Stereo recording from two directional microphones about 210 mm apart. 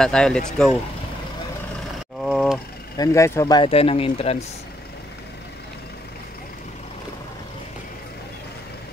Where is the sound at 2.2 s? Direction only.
Centre (ahead or behind).